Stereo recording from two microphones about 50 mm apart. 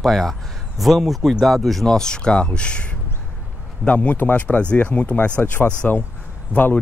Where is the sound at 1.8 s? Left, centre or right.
Centre.